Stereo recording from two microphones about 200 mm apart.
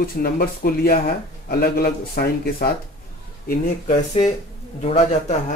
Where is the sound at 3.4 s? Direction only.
35° left (ahead or behind).